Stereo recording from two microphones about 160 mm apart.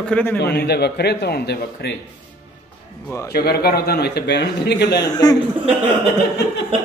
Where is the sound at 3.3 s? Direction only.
80° left.